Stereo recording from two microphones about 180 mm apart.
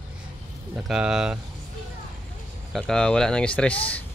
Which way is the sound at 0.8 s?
5° right (ahead or behind).